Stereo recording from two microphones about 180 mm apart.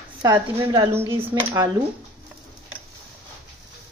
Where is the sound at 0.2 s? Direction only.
20° right (ahead or behind).